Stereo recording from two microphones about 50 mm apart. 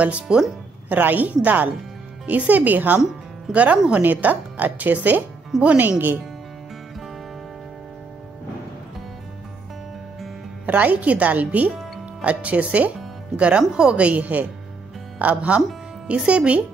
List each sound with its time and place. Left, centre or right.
0.0 s speech: right
0.8 s speech: right
10.7 s speech: right